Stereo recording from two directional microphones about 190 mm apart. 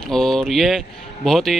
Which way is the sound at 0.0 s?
Centre (ahead or behind).